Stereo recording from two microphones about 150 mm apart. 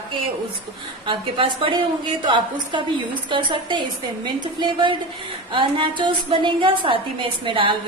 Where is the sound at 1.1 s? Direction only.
35° right (ahead or behind).